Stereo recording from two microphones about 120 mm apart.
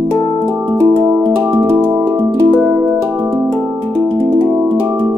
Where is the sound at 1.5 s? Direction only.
20° right (ahead or behind).